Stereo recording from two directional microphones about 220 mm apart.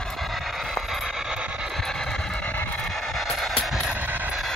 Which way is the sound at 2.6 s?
Centre (ahead or behind).